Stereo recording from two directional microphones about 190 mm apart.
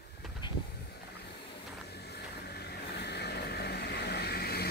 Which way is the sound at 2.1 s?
55° left (ahead or behind).